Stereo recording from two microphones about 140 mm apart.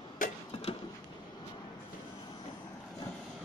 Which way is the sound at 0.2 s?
70° left (ahead or behind).